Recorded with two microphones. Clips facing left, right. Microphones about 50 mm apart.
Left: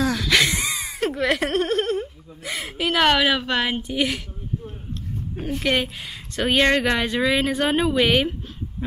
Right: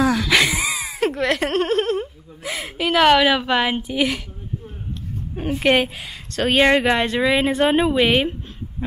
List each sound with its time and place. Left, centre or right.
0.0 s speech: centre
5.3 s a woman's voice: centre